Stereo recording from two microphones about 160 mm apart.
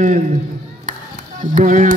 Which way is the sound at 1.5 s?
50° right (ahead or behind).